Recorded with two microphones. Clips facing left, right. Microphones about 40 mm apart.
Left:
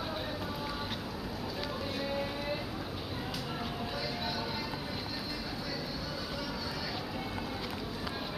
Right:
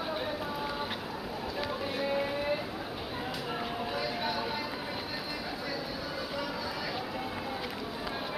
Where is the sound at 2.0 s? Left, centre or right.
Centre.